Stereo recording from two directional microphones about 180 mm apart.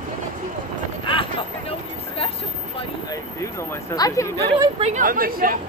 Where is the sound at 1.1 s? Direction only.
30° left (ahead or behind).